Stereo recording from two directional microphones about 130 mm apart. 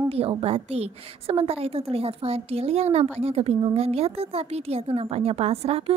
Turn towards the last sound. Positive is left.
turn(degrees=-50)  # may be behind; listen again after turning